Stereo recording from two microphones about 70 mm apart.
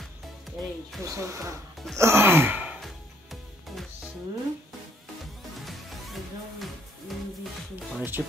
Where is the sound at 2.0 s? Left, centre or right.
Right.